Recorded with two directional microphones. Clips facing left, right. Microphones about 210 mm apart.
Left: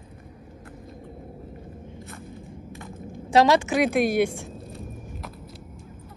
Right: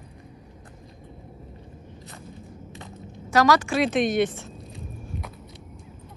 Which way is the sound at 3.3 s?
25° left (ahead or behind).